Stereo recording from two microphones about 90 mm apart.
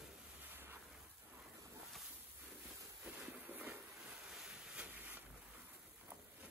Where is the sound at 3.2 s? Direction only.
15° right (ahead or behind).